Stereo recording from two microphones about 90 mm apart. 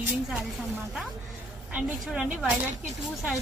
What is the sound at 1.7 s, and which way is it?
Speech, 10° right (ahead or behind).